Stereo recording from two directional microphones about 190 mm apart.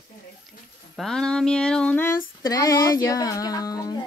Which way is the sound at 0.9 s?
Centre (ahead or behind).